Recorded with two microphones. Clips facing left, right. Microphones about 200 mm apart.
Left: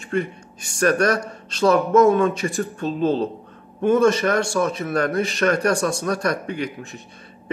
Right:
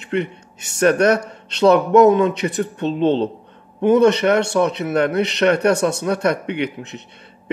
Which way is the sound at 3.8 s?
20° right (ahead or behind).